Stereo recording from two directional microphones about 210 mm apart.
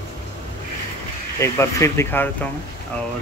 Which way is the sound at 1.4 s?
15° left (ahead or behind).